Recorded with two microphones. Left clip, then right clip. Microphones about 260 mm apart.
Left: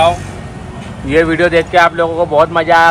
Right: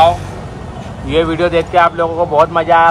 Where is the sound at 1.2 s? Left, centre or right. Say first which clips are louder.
Left 2 dB; left.